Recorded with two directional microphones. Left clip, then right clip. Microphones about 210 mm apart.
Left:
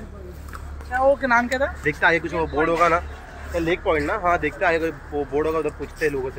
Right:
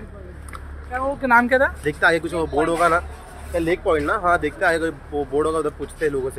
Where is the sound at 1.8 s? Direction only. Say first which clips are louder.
Right 1 dB; 10° right (ahead or behind).